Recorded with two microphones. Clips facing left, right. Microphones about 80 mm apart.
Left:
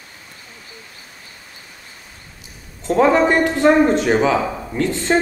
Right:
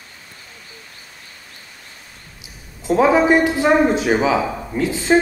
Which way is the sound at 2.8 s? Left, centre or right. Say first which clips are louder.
Even; centre.